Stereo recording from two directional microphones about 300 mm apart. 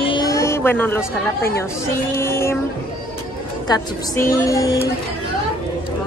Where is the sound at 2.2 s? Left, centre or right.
Centre.